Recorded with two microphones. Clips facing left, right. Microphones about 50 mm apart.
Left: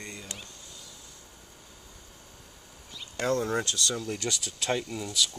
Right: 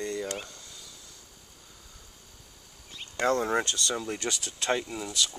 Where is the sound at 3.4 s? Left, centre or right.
Right; by 5.3 s centre.